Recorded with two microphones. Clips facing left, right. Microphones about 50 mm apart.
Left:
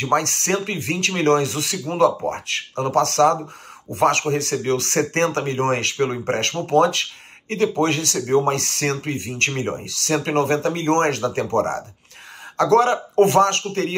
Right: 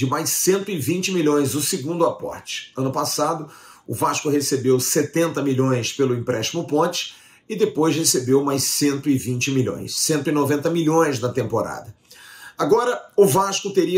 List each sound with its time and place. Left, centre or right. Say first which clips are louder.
0.0 s speech: even; left